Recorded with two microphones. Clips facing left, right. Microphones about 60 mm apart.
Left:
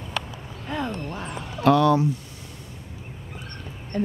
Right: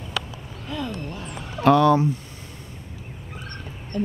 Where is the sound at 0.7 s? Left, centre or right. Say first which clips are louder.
Left 1 dB; left.